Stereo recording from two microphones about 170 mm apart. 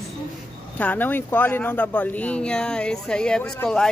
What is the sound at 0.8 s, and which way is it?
Speech, 10° left (ahead or behind).